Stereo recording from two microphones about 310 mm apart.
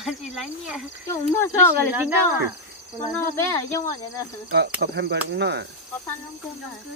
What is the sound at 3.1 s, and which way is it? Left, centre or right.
Speech, centre.